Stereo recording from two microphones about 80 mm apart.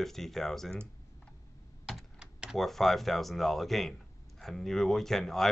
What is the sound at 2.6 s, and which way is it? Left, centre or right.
Speech, centre.